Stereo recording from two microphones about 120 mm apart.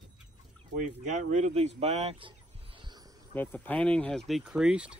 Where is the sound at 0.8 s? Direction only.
85° right; by 2.1 s 60° right (ahead or behind).